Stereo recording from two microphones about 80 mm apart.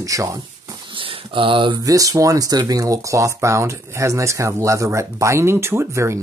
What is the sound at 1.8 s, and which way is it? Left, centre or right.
Speech, right.